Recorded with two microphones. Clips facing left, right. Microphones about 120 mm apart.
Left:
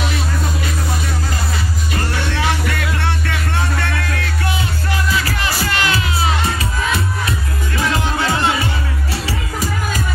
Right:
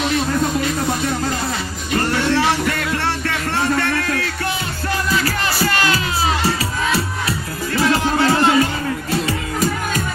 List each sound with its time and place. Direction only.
3.7 s music: 40° right (ahead or behind)
5.2 s music: 40° right (ahead or behind)
7.2 s music: 35° right (ahead or behind)